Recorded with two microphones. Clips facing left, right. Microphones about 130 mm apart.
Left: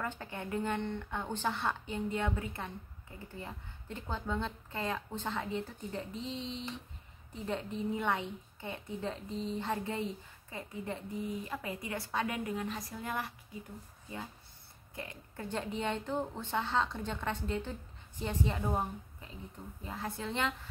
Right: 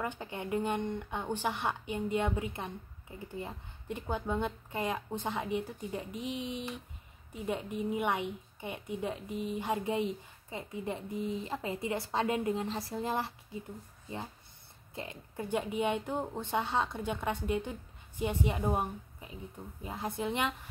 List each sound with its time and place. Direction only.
0.0 s a woman's voice: 15° right (ahead or behind)
15.0 s speech: 15° right (ahead or behind)